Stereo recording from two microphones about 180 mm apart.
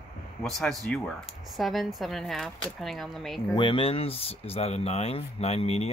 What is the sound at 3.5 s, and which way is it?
Speech, 30° left (ahead or behind).